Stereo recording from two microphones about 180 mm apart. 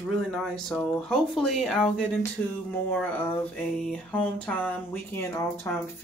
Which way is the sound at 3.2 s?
5° left (ahead or behind).